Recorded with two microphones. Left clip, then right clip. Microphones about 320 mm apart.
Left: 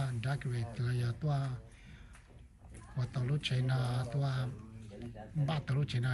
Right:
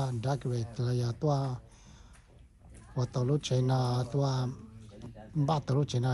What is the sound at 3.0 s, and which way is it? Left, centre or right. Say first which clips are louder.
Speech: right 7 dB; centre.